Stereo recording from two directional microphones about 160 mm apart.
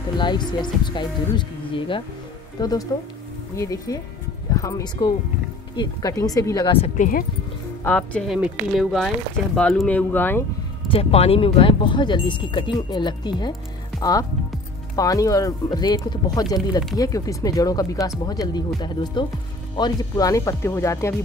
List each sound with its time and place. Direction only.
0.2 s speech: 30° left (ahead or behind)
7.0 s speech: 60° left (ahead or behind)
7.8 s speech: 10° left (ahead or behind)
10.9 s speech: 40° left (ahead or behind); by 21.1 s 15° left (ahead or behind)